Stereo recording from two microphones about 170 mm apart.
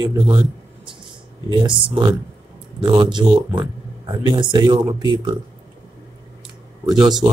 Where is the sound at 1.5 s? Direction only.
30° right (ahead or behind).